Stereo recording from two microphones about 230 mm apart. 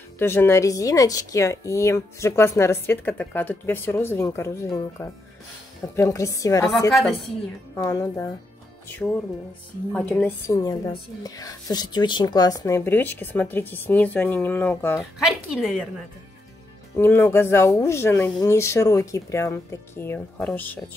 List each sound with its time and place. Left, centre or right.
0.2 s a woman's voice: centre
7.7 s a woman's voice: centre
9.9 s a woman's voice: centre
15.0 s a woman's voice: centre
16.9 s a woman's voice: centre